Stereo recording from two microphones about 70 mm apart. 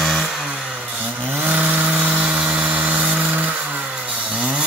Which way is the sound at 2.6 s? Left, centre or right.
Right.